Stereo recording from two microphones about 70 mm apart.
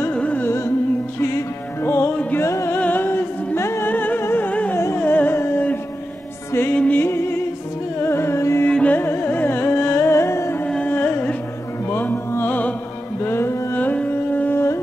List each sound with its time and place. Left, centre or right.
0.1 s music: centre
0.4 s music: left
2.8 s music: left
3.9 s music: left
4.5 s music: left
4.7 s music: left
6.7 s music: left
7.1 s music: left
8.6 s music: centre
9.0 s music: left
10.9 s music: left
13.2 s music: left
13.7 s carnatic music: left